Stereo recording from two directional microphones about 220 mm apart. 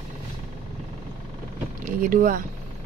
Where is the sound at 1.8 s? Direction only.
40° right (ahead or behind).